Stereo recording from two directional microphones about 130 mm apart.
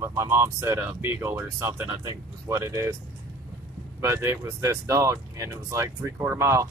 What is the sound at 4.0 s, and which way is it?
Speech, 20° right (ahead or behind).